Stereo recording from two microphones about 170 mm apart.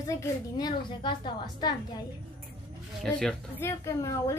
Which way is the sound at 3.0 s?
5° left (ahead or behind).